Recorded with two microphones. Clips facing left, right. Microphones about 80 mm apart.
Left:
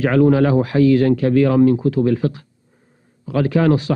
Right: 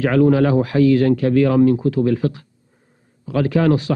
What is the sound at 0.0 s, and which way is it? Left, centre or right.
A man's voice, left.